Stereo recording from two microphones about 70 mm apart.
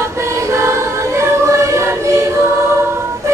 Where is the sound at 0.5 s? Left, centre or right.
Right.